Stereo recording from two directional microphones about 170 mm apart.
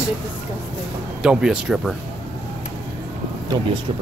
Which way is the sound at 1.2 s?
5° right (ahead or behind).